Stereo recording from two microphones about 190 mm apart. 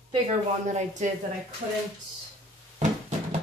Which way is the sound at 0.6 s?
40° right (ahead or behind).